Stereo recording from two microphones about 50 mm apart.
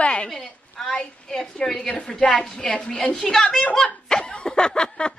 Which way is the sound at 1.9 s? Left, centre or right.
Centre.